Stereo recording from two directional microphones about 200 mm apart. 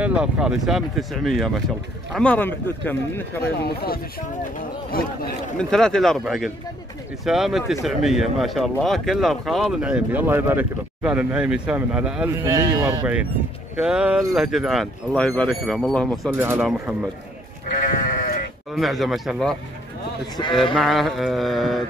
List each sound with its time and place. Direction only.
0.0 s speech: 5° right (ahead or behind)
3.4 s speech: 50° left (ahead or behind)
5.6 s speech: 5° left (ahead or behind)
12.4 s speech: 15° right (ahead or behind); by 16.3 s 5° left (ahead or behind)
16.3 s speech: 10° right (ahead or behind)
18.7 s speech: centre (ahead or behind)
20.7 s speech: centre (ahead or behind)